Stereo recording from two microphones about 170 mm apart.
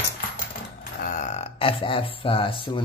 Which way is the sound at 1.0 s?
50° left (ahead or behind).